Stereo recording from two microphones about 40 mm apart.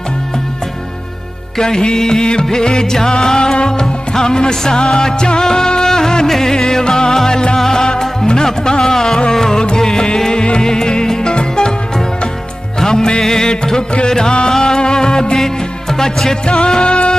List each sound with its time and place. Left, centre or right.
1.6 s music: centre
12.8 s music: centre